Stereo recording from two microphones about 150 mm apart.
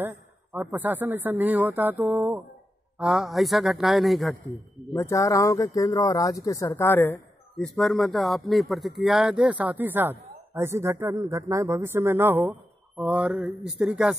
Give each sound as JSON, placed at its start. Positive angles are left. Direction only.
{"t": 0.0, "sound": "a sound", "side_deg": -15}
{"t": 0.7, "sound": "speech", "side_deg": -10}
{"t": 4.9, "sound": "speech", "side_deg": 20}